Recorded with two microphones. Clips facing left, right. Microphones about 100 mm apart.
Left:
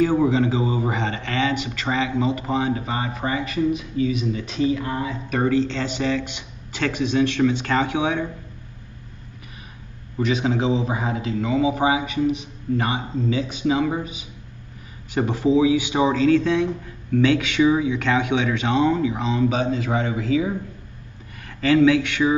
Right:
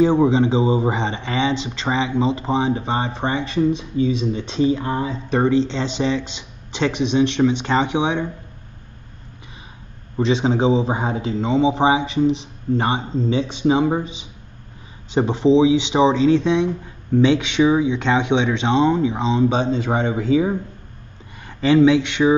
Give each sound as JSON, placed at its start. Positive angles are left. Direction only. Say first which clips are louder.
{"t": 0.0, "sound": "a man's voice", "louder": "right 3 dB", "side_deg": -25}
{"t": 10.1, "sound": "a man's voice", "louder": "right 3 dB", "side_deg": -30}